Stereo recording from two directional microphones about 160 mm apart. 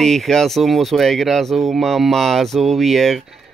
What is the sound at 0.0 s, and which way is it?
Speech, centre (ahead or behind).